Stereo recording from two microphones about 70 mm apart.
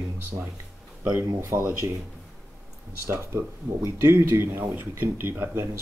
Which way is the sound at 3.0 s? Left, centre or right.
Right.